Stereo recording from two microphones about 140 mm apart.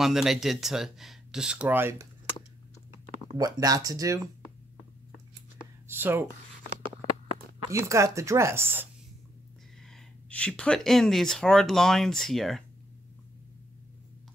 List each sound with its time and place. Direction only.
0.0 s speech: centre (ahead or behind)
3.3 s speech: 25° right (ahead or behind)
5.9 s a sound: 15° right (ahead or behind)
7.8 s speech: 20° right (ahead or behind)
9.8 s speech: 5° left (ahead or behind)